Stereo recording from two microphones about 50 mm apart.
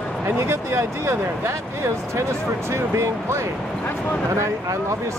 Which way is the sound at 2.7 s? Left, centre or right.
Right.